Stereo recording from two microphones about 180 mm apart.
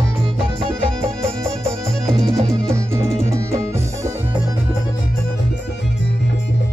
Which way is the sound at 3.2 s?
15° right (ahead or behind).